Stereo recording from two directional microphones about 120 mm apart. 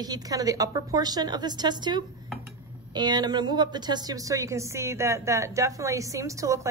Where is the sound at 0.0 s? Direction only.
30° right (ahead or behind).